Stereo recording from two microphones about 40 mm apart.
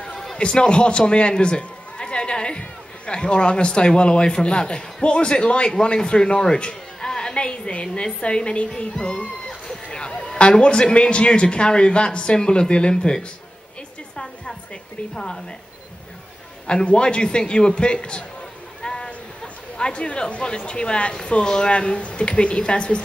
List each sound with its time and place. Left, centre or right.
0.0 s a sound: centre
0.4 s a man's voice: left
9.8 s music: left
10.3 s a man's voice: left
14.1 s hair dryer: centre
15.1 s a man's voice: centre
16.6 s a man's voice: left
18.8 s a sound: centre
19.0 s a man's voice: left